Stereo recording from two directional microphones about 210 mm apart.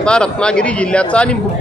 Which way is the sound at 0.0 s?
5° left (ahead or behind).